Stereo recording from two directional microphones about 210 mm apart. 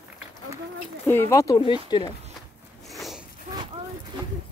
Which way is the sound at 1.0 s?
10° left (ahead or behind).